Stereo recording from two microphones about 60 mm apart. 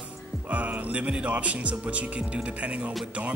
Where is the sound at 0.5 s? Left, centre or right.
Right.